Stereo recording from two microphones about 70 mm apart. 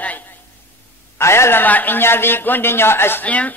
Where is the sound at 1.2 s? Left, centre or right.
Left.